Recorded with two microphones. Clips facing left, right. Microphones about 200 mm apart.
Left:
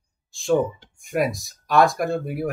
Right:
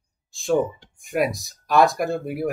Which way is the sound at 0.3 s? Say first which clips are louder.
Left 1 dB; centre (ahead or behind).